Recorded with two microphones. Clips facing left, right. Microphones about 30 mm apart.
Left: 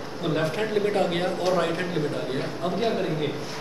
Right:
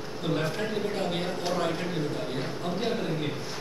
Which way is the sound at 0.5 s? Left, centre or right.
Left.